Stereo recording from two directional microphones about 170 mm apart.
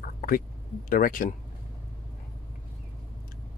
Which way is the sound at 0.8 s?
55° left (ahead or behind).